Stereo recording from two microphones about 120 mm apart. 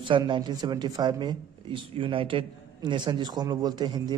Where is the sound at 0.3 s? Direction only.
35° right (ahead or behind).